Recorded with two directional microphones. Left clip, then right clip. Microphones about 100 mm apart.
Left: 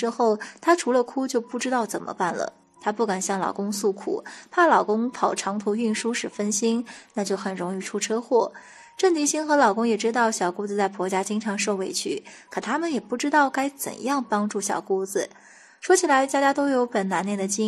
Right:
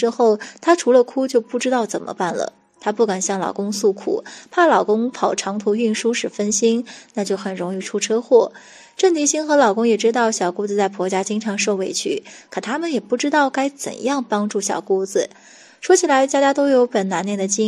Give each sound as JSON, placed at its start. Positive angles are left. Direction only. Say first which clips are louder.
{"t": 0.0, "sound": "speech", "louder": "right 6 dB", "side_deg": -30}